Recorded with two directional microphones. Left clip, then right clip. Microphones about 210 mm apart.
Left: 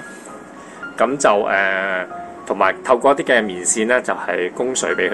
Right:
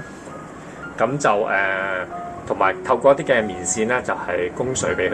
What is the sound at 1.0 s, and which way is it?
Speech, 50° left (ahead or behind).